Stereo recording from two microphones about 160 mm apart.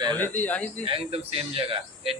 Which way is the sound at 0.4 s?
10° left (ahead or behind).